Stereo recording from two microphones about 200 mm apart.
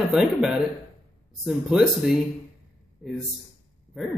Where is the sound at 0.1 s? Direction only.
5° right (ahead or behind).